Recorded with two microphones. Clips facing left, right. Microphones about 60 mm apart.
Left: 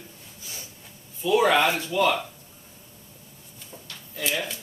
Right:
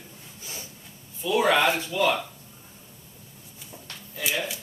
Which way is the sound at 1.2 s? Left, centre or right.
Centre.